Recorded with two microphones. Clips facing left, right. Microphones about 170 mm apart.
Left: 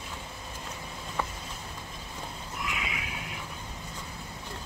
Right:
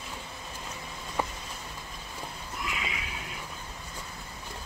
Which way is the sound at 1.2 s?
15° right (ahead or behind).